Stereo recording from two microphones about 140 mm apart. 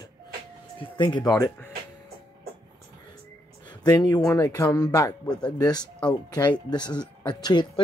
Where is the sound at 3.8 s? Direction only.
30° left (ahead or behind).